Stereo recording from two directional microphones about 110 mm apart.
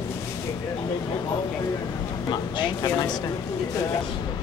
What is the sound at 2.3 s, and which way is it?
Speech, 45° left (ahead or behind).